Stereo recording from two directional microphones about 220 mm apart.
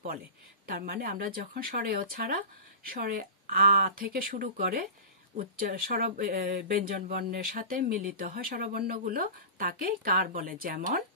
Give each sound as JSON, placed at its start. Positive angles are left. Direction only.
{"t": 0.7, "sound": "speech", "side_deg": -40}